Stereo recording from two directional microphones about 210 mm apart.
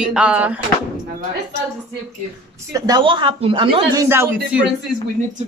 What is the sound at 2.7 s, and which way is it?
Speech, 20° right (ahead or behind).